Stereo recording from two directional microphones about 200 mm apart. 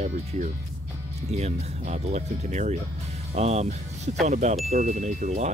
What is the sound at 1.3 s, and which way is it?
Speech, 35° right (ahead or behind).